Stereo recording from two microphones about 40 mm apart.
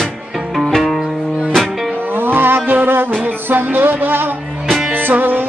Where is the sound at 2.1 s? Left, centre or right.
Right.